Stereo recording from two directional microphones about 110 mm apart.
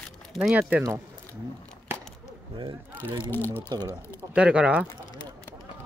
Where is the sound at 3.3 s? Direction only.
20° left (ahead or behind).